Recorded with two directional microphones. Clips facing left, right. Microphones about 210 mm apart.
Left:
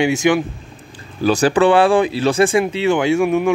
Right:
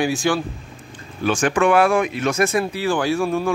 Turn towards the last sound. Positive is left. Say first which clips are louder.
# left 5 dB
turn(degrees=20)  # may be behind; listen again after turning